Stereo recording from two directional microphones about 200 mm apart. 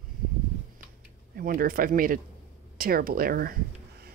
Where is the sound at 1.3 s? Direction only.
45° right (ahead or behind).